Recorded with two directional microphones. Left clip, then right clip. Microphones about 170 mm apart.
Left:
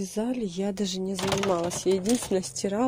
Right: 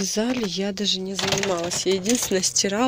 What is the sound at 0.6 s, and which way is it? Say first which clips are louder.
Speech: right 5 dB; 25° left (ahead or behind).